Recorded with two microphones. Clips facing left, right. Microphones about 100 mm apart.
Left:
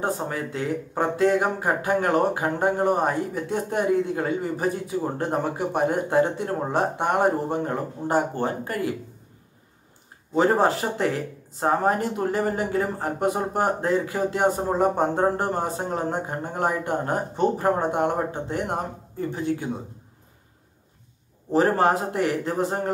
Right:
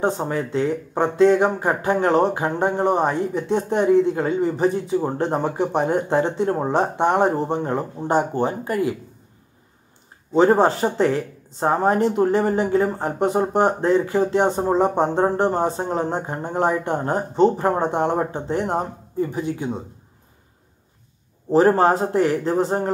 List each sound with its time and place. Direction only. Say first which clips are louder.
0.0 s speech: right 5 dB; 25° right (ahead or behind)
10.3 s a man's voice: right 4 dB; 30° right (ahead or behind)
19.3 s speech: right 1 dB; 20° right (ahead or behind)
21.5 s a man's voice: right 4 dB; 30° right (ahead or behind)